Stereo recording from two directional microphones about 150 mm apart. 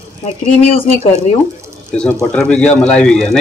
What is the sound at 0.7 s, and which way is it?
Speech, 45° left (ahead or behind).